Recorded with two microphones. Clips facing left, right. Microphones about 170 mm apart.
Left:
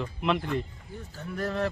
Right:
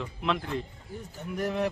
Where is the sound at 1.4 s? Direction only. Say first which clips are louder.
Right 1 dB; 15° right (ahead or behind).